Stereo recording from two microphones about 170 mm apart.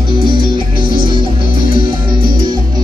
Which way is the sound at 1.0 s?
30° right (ahead or behind).